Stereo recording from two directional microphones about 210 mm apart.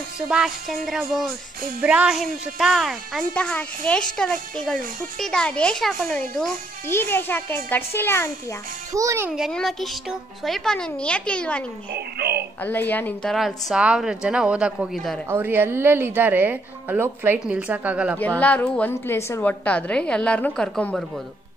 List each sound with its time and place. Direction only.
0.3 s a woman's voice: 5° right (ahead or behind)
8.9 s a child's voice: 15° right (ahead or behind)
9.3 s a woman's voice: centre (ahead or behind)
12.2 s speech: 50° right (ahead or behind)
12.6 s a woman's voice: 10° left (ahead or behind)
18.2 s a child's voice: 5° left (ahead or behind)